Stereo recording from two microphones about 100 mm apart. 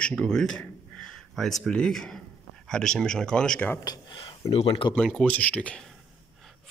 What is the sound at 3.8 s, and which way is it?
Speech, 40° left (ahead or behind).